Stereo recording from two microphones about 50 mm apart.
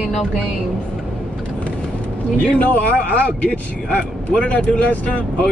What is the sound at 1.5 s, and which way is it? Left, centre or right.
Speech, left.